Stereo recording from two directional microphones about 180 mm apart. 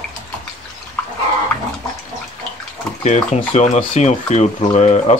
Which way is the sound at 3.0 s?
40° left (ahead or behind).